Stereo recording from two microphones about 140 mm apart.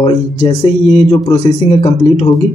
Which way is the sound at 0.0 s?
50° left (ahead or behind).